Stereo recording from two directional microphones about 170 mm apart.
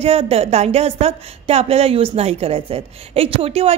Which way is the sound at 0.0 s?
35° right (ahead or behind).